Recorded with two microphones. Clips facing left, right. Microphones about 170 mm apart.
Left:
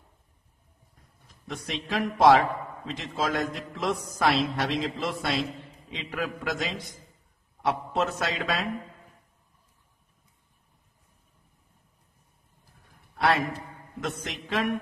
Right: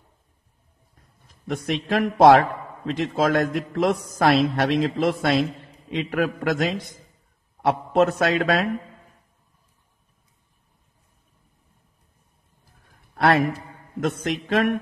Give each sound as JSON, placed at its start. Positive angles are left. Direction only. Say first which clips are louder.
{"t": 1.5, "sound": "a man's voice", "louder": "right 8 dB", "side_deg": -55}
{"t": 13.1, "sound": "a sound", "louder": "right 5 dB", "side_deg": -55}
{"t": 14.0, "sound": "a man's voice", "louder": "right 9 dB", "side_deg": -55}